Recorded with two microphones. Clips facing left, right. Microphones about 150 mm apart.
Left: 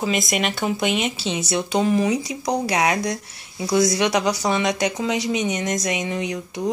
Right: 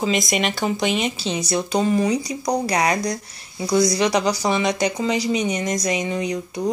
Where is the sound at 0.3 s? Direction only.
Centre (ahead or behind).